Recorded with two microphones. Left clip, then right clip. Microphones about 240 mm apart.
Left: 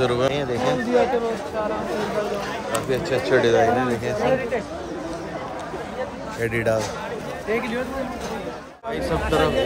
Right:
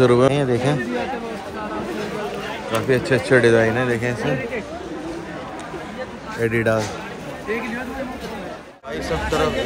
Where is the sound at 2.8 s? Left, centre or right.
Right.